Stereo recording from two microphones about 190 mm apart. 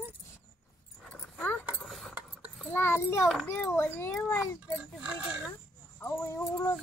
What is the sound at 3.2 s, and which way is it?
Speech, centre (ahead or behind).